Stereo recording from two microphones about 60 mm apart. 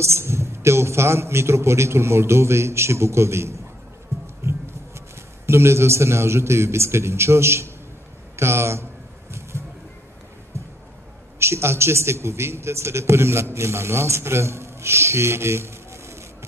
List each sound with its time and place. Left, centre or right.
0.0 s a man's voice: right
4.4 s music: right
5.5 s a man's voice: right
8.4 s a sound: right
10.5 s a sound: right
11.3 s a man's voice: right